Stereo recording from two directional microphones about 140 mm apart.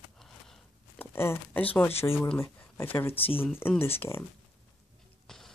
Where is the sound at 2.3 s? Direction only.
20° left (ahead or behind).